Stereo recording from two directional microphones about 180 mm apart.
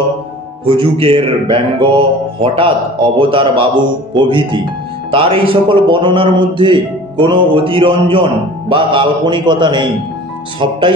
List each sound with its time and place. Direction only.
0.7 s speech: 30° right (ahead or behind)